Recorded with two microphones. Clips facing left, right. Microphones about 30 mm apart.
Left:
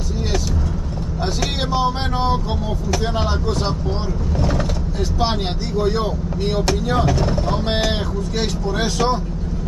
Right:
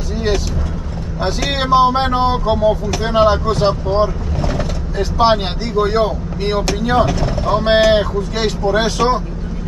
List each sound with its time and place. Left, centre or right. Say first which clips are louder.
1.2 s speech: right 5 dB; right